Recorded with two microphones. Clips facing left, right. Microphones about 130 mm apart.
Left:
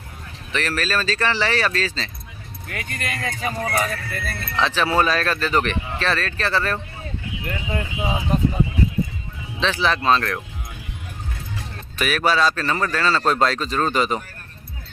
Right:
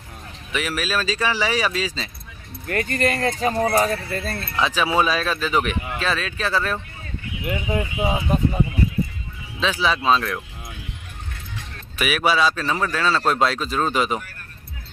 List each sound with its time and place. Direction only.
0.5 s speech: 5° right (ahead or behind)
2.7 s speech: 40° right (ahead or behind)
4.6 s speech: 5° right (ahead or behind)
9.6 s speech: 5° right (ahead or behind)
12.0 s speech: 5° right (ahead or behind)